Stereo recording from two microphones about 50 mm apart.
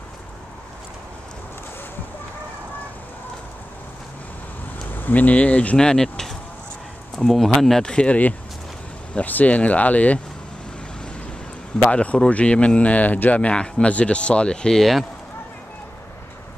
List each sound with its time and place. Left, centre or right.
4.9 s speech: left
5.8 s speech: centre
7.8 s speech: centre
9.1 s speech: left
11.8 s speech: left
14.8 s speech: centre